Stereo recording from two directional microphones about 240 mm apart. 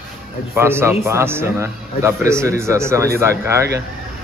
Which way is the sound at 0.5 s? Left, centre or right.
Centre.